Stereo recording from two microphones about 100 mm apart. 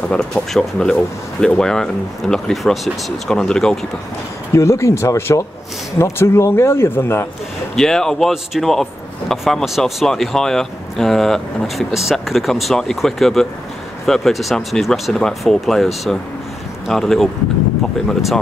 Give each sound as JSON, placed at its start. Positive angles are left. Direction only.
{"t": 0.1, "sound": "speech", "side_deg": 5}
{"t": 4.6, "sound": "speech", "side_deg": 30}
{"t": 7.7, "sound": "speech", "side_deg": 5}